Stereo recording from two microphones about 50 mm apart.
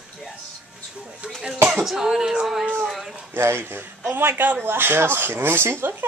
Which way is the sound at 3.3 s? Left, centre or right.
Right.